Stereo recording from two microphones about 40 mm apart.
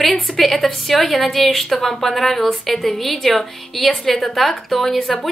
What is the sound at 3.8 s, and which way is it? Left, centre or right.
Speech, centre.